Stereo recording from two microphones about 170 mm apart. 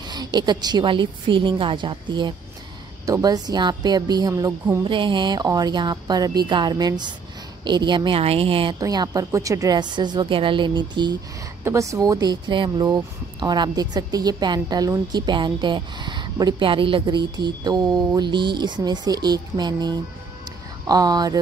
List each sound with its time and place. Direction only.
0.0 s speech: 25° right (ahead or behind)
4.8 s a woman's voice: 30° right (ahead or behind)
8.7 s speech: 20° right (ahead or behind)